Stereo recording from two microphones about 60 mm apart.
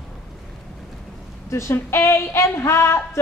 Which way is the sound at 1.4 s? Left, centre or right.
Left.